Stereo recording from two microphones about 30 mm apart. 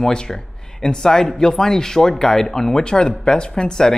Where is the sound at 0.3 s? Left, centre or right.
Centre.